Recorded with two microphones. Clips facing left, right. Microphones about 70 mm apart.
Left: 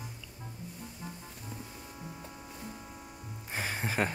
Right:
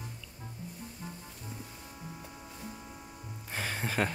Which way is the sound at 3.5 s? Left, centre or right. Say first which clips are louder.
Left 1 dB; centre.